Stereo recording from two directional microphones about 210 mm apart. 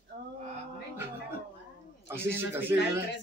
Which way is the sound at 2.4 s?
10° right (ahead or behind).